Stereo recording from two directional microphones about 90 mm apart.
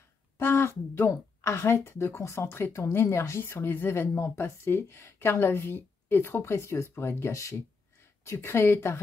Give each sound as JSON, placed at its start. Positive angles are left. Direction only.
{"t": 0.4, "sound": "speech", "side_deg": 25}